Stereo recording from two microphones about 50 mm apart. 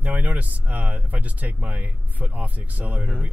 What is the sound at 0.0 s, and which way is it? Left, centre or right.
Speech, right.